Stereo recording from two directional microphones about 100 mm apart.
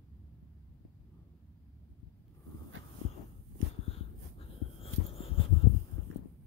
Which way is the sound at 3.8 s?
80° left.